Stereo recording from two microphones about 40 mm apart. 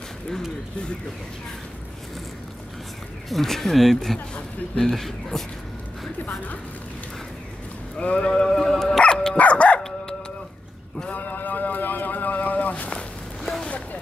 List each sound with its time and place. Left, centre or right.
3.3 s speech: centre
8.0 s speech: left
8.5 s dog: centre
9.0 s dog: left
9.4 s dog: left
9.8 s dog: centre
11.1 s a sound: left